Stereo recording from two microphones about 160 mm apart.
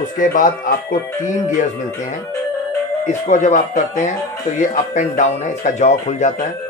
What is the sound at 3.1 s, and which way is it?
Speech, 50° left (ahead or behind).